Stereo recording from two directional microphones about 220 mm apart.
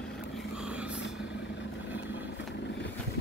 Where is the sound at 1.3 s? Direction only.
55° left (ahead or behind).